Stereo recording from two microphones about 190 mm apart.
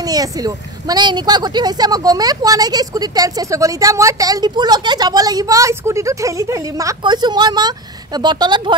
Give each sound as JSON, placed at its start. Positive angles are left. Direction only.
{"t": 0.0, "sound": "speech", "side_deg": -20}